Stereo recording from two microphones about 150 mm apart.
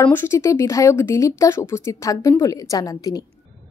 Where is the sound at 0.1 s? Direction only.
15° left (ahead or behind).